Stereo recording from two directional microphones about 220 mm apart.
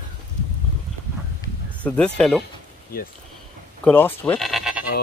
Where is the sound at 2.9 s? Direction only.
40° left (ahead or behind).